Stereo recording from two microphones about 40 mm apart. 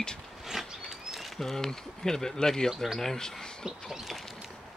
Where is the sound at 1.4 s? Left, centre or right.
Centre.